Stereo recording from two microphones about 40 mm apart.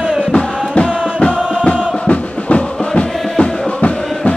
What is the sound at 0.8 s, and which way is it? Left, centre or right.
Music, left.